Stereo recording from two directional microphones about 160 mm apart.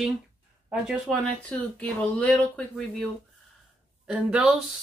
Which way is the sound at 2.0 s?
10° left (ahead or behind).